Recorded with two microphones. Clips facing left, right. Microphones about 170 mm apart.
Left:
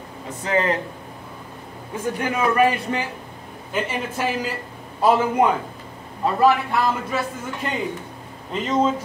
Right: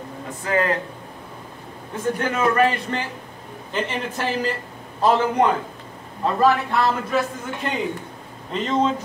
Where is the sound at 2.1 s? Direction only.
10° left (ahead or behind).